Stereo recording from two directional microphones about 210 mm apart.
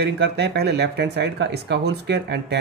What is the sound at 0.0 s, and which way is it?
Speech, 50° right (ahead or behind).